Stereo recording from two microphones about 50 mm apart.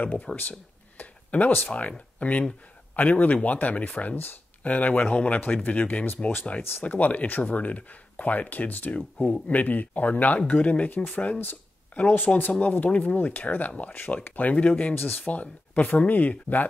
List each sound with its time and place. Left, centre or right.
0.0 s speech: left
15.0 s speech: left
15.2 s speech: left